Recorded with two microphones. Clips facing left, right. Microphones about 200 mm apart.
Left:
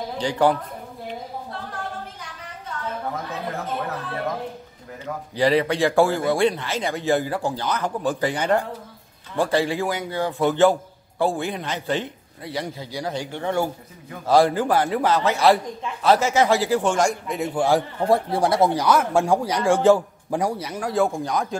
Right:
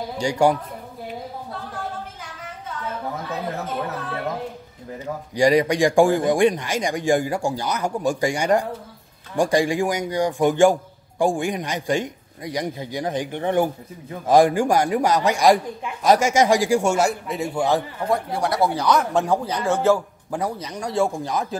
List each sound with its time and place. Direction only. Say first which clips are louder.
0.2 s a man's voice: right 1 dB; 10° right (ahead or behind)
5.3 s a man's voice: right 2 dB; 15° right (ahead or behind); by 17.8 s 10° left (ahead or behind)
18.0 s speech: left 3 dB; 30° left (ahead or behind)
18.8 s a man's voice: left 1 dB; 10° left (ahead or behind)